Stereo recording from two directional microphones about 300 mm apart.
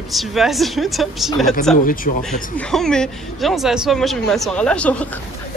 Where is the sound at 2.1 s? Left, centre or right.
Left.